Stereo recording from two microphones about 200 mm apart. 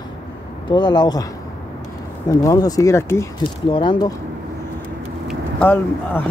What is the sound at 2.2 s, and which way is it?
Speech, 15° left (ahead or behind).